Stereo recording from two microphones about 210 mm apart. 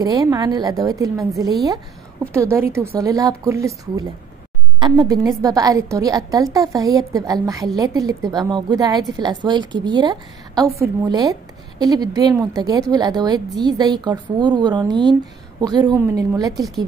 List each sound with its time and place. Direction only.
0.0 s a woman's voice: 15° right (ahead or behind)
3.0 s a woman's voice: 15° right (ahead or behind)